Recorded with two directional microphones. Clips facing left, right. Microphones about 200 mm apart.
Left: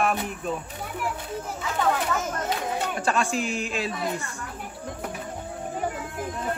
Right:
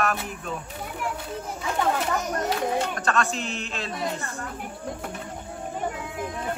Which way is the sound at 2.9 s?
10° left (ahead or behind).